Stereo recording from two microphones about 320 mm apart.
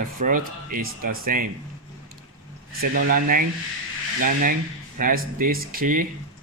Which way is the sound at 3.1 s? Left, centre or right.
Right.